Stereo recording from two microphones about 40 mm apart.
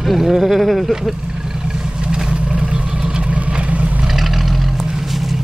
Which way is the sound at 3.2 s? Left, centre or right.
Right.